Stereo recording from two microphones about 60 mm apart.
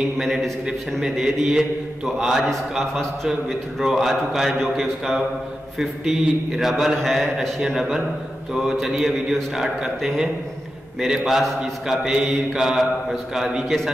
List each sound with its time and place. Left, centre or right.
0.2 s a man's voice: centre